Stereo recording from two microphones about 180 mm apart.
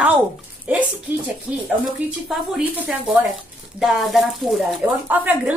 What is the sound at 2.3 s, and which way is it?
Speech, 5° right (ahead or behind).